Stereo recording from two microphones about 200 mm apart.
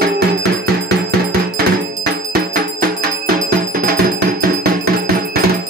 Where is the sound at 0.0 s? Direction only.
50° right (ahead or behind).